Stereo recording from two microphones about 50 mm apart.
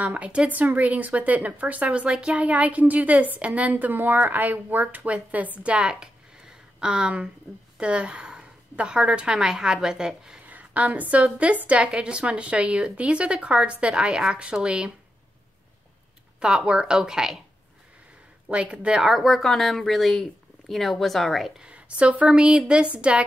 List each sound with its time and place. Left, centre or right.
0.0 s speech: right
0.5 s a woman's voice: right; by 10.4 s centre
10.4 s a woman's voice: right; by 14.9 s centre
16.3 s speech: centre
18.5 s speech: right
19.0 s speech: centre
21.5 s speech: right